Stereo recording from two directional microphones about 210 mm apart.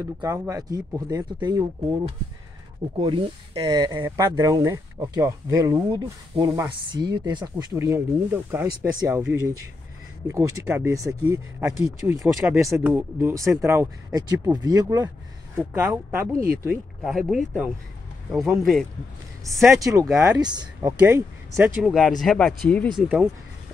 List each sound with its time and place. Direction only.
0.0 s speech: 15° right (ahead or behind)
17.0 s speech: centre (ahead or behind)
19.4 s speech: 15° right (ahead or behind)
21.0 s speech: 10° right (ahead or behind)